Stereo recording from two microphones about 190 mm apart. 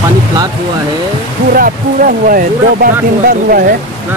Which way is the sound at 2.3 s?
50° right (ahead or behind).